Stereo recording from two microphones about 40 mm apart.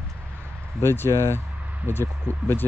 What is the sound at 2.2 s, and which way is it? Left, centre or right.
Speech, left.